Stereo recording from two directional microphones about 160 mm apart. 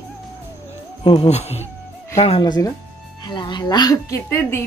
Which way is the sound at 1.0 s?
35° left (ahead or behind).